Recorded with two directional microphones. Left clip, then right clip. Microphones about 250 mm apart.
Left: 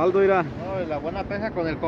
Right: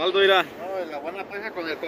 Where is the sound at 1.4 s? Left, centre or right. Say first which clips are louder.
Left 3 dB; left.